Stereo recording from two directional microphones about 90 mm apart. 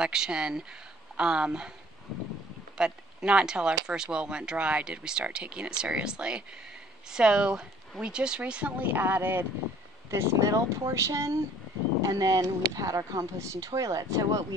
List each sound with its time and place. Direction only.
0.0 s speech: 5° right (ahead or behind)
2.8 s speech: 10° right (ahead or behind); by 14.4 s 40° right (ahead or behind)